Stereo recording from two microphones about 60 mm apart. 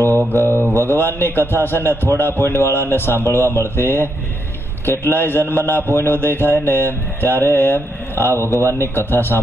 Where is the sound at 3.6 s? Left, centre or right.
Left.